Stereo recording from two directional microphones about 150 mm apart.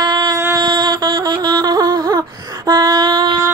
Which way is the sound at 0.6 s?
30° right (ahead or behind).